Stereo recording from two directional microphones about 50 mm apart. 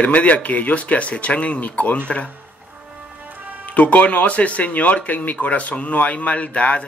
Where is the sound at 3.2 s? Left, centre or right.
Right.